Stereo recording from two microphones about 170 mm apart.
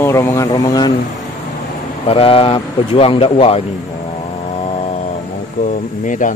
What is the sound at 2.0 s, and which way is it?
Speech, 35° left (ahead or behind).